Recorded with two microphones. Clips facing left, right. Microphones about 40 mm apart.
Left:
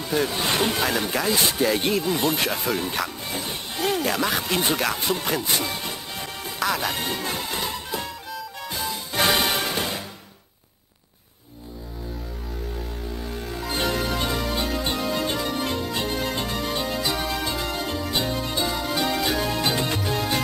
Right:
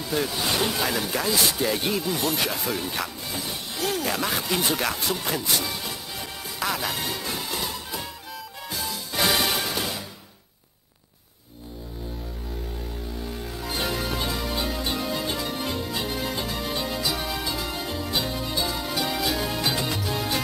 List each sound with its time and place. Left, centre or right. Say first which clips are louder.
0.0 s speech: left 2 dB; centre
2.6 s music: left 3 dB; centre
4.1 s speech: left 3 dB; centre
4.4 s speech: left 2 dB; centre
5.7 s music: left 2 dB; centre
13.2 s music: left 2 dB; centre